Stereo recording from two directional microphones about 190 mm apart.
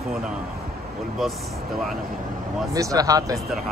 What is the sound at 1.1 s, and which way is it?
Speech, centre (ahead or behind).